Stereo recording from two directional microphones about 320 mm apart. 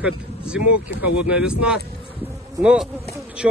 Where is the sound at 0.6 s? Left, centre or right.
Left.